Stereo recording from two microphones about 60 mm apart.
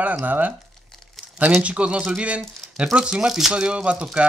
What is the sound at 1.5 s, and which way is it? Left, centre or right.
Speech, right.